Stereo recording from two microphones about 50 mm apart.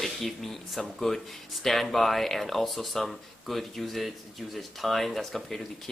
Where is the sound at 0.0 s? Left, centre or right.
Centre.